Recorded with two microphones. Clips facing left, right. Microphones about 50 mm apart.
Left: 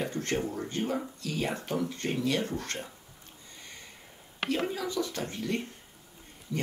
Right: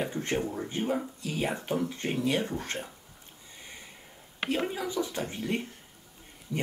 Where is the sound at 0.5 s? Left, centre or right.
Centre.